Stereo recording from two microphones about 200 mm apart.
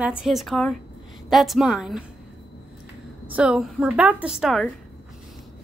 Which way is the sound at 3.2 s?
5° right (ahead or behind).